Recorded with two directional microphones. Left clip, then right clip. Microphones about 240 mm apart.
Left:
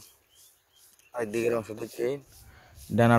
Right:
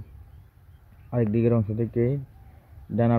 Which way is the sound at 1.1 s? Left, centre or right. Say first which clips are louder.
Right 3 dB; centre.